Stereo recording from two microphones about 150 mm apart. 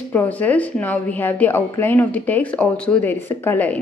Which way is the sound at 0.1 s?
10° left (ahead or behind).